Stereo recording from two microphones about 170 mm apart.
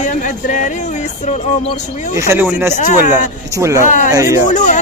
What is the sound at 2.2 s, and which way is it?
Speech, 10° right (ahead or behind).